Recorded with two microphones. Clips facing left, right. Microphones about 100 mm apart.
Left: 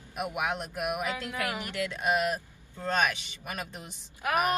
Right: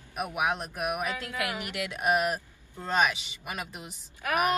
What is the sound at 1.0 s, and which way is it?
Speech, 20° left (ahead or behind).